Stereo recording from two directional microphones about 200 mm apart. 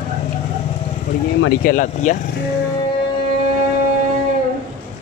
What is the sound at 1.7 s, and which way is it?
Speech, 40° left (ahead or behind).